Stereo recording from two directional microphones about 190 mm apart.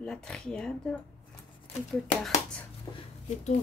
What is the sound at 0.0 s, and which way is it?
Speech, 5° left (ahead or behind).